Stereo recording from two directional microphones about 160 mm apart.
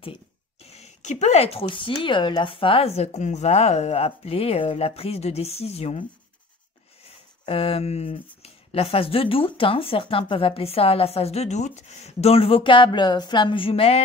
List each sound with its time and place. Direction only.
0.0 s speech: 35° left (ahead or behind)
7.4 s speech: 35° left (ahead or behind)